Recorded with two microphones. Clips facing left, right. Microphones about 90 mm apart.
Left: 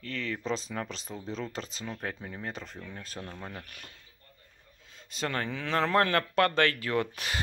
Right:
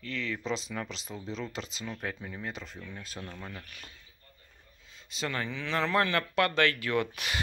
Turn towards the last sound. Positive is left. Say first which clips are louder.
# even
turn(degrees=35)  # may be behind; listen again after turning